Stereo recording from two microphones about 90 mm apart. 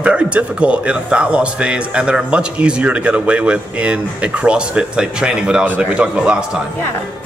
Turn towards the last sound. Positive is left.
turn(degrees=-10)  # may be behind; listen again after turning